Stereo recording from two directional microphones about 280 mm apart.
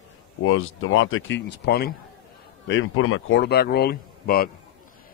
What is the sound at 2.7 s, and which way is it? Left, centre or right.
A man's voice, left.